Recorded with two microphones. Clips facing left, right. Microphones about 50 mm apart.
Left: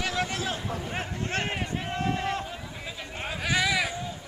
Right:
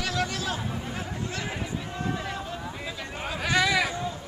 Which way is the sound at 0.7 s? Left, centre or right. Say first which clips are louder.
Left 1 dB; left.